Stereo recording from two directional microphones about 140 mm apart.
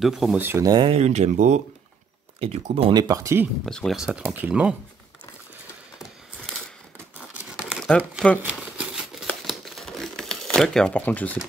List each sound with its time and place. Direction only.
0.0 s speech: centre (ahead or behind)
0.4 s speech: 15° right (ahead or behind)
0.7 s speech: 40° right (ahead or behind); by 1.6 s 60° right (ahead or behind)
2.4 s speech: 45° right (ahead or behind); by 3.4 s 20° right (ahead or behind)
3.6 s speech: centre (ahead or behind)
7.2 s tearing: 10° right (ahead or behind)
8.4 s crumpling: 10° right (ahead or behind); by 11.3 s 10° left (ahead or behind)